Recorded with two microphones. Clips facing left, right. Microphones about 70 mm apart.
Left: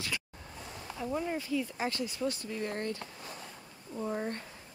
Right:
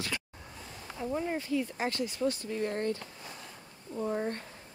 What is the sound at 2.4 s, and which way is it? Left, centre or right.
Speech, right.